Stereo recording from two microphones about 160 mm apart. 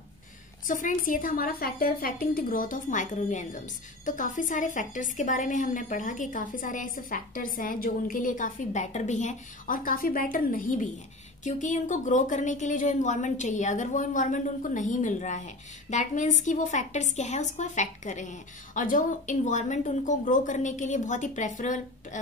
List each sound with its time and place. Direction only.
0.7 s a woman's voice: 55° left (ahead or behind)